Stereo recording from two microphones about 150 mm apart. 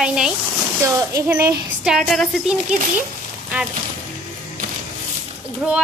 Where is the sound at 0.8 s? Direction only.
20° right (ahead or behind).